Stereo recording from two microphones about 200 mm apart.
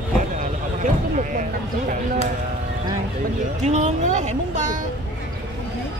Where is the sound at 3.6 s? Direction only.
35° right (ahead or behind).